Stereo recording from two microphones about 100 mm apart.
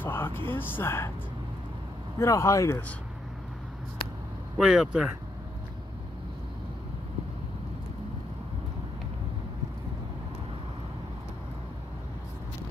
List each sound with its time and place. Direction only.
0.0 s vehicle: 20° left (ahead or behind)
0.5 s speech: 20° left (ahead or behind)
2.1 s speech: 30° left (ahead or behind)
4.6 s speech: 5° right (ahead or behind)